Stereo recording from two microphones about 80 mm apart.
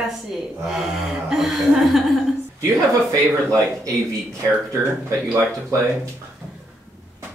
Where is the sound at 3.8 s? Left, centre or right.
Right.